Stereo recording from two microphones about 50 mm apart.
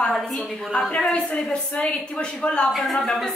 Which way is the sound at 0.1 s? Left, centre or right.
Centre.